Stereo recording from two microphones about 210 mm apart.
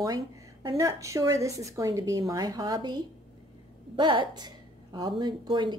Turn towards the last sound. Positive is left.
turn(degrees=-20)  # may be behind; listen again after turning